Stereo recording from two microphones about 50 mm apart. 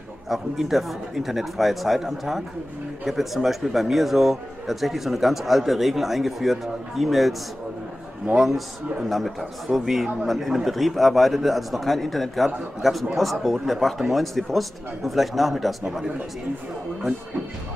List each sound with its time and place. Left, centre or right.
0.3 s speech: centre
8.4 s speech: centre